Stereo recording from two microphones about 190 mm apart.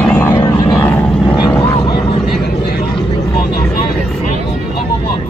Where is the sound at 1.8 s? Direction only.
25° left (ahead or behind).